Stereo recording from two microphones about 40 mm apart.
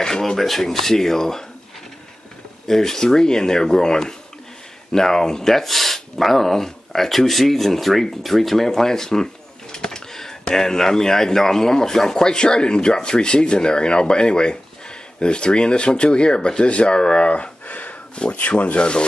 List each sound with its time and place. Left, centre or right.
0.0 s speech: centre
2.7 s a man's voice: centre